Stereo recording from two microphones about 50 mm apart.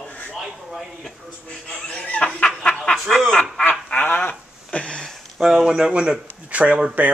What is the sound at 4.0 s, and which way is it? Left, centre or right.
Speech, left.